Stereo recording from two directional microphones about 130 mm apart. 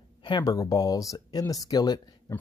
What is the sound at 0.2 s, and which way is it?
Speech, 35° left (ahead or behind).